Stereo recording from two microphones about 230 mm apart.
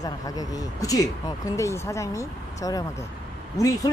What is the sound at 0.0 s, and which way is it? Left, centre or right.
Speech, centre.